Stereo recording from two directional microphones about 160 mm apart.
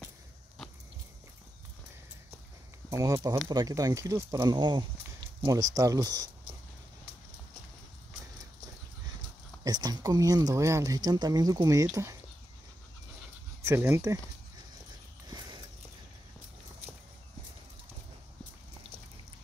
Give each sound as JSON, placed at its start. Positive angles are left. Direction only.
{"t": 2.9, "sound": "speech", "side_deg": -20}
{"t": 9.6, "sound": "speech", "side_deg": -25}
{"t": 13.7, "sound": "speech", "side_deg": -15}
{"t": 15.2, "sound": "a sound", "side_deg": -25}